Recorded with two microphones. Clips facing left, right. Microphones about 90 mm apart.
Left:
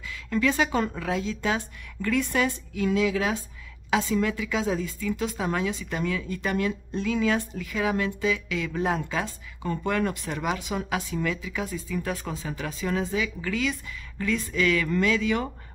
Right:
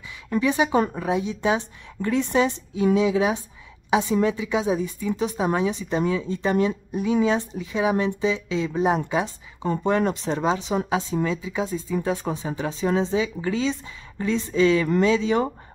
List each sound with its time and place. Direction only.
0.1 s speech: 20° right (ahead or behind)